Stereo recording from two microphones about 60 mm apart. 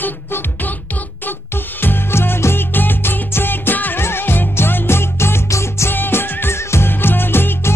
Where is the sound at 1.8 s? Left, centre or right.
Left.